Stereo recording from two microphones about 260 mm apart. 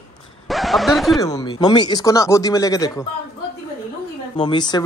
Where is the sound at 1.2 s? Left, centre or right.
Centre.